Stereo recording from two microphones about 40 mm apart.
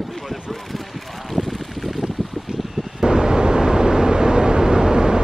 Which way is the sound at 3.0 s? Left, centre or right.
Centre.